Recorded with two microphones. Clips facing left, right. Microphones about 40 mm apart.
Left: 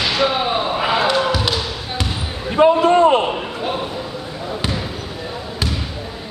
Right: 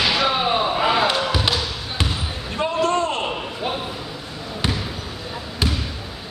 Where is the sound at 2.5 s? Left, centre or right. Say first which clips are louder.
Left 8 dB; centre.